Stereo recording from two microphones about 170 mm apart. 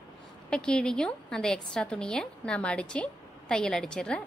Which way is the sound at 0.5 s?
5° left (ahead or behind).